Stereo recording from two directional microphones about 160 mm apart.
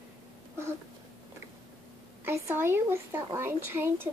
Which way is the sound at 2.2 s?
15° right (ahead or behind).